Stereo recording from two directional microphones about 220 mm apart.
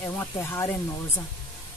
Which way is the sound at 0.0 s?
10° left (ahead or behind).